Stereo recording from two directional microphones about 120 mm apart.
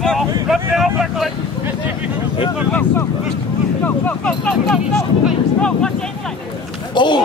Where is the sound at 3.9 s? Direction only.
10° left (ahead or behind).